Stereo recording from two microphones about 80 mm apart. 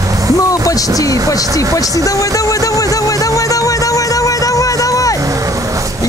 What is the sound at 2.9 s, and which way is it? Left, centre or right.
Music, left.